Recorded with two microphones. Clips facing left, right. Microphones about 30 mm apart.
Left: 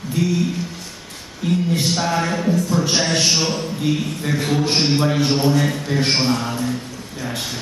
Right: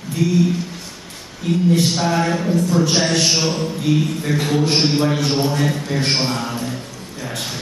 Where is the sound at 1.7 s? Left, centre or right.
Centre.